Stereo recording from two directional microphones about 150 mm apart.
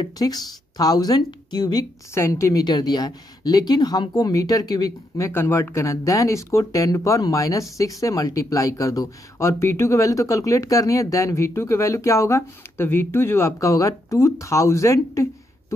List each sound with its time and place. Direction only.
0.0 s speech: 25° left (ahead or behind)